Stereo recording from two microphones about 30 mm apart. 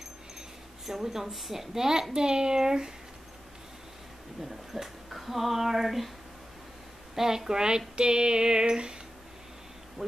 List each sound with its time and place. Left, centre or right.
0.8 s speech: centre
1.7 s speech: centre
2.1 s a sound: right
4.4 s speech: centre
7.2 s speech: centre
7.9 s a sound: right